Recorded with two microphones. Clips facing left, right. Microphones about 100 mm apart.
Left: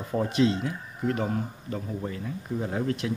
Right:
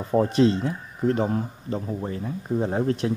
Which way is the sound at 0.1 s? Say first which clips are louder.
Right 5 dB; 35° right (ahead or behind).